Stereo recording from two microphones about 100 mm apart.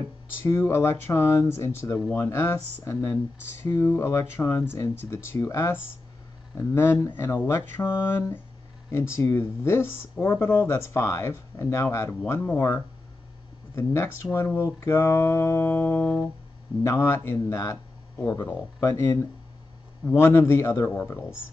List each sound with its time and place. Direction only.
0.5 s speech: 30° left (ahead or behind)